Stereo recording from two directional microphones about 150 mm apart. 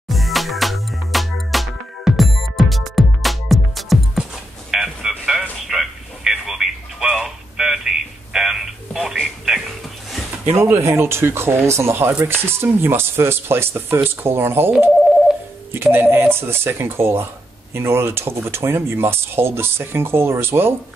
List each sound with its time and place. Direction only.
0.1 s music: centre (ahead or behind)
8.3 s radio: 5° right (ahead or behind)
10.6 s speech: 15° right (ahead or behind)
15.7 s speech: 15° right (ahead or behind)